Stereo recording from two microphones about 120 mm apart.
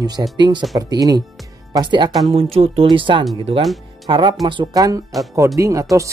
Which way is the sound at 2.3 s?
55° right (ahead or behind).